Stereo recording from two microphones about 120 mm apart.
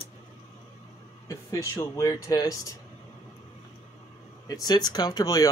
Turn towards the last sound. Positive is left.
turn(degrees=30)  # may be behind; listen again after turning